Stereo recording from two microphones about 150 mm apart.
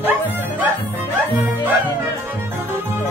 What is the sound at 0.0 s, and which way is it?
Music, 10° right (ahead or behind).